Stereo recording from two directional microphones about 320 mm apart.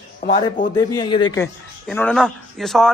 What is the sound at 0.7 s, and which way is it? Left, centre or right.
A man's voice, centre.